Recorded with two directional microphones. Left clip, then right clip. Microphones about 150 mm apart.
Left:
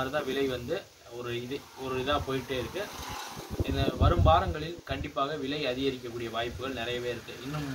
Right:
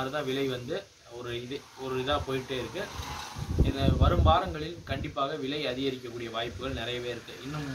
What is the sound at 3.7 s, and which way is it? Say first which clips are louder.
A man's voice: left 1 dB; 5° right (ahead or behind).